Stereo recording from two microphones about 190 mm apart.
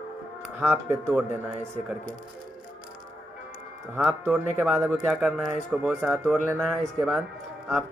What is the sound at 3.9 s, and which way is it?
Speech, 5° right (ahead or behind).